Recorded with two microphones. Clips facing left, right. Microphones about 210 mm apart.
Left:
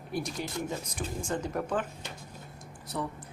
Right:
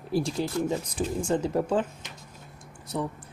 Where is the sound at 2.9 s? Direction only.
15° right (ahead or behind).